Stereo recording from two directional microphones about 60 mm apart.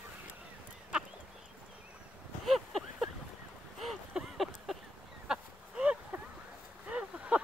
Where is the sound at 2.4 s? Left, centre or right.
Centre.